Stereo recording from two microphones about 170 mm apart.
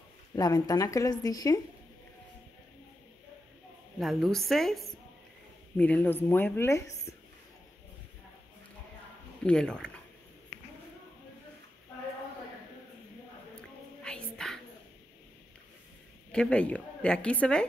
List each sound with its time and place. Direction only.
0.4 s a woman's voice: 20° left (ahead or behind)
4.0 s a woman's voice: centre (ahead or behind)
9.4 s a woman's voice: 5° left (ahead or behind)
13.6 s whispering: 5° left (ahead or behind)
16.3 s speech: 5° left (ahead or behind)